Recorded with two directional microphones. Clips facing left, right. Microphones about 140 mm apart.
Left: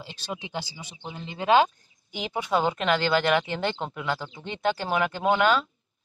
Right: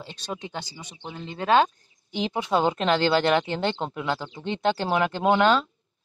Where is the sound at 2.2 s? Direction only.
25° right (ahead or behind).